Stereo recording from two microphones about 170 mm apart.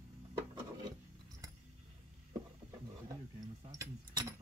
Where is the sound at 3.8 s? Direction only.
20° right (ahead or behind).